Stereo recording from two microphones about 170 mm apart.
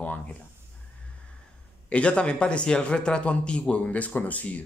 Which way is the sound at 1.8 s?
5° left (ahead or behind).